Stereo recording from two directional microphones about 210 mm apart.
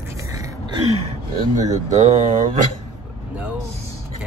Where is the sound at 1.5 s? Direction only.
35° right (ahead or behind).